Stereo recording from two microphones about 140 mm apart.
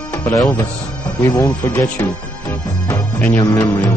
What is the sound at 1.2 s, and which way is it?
Speech, 20° left (ahead or behind).